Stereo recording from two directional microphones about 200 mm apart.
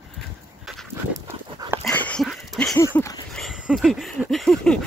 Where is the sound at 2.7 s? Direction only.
15° left (ahead or behind).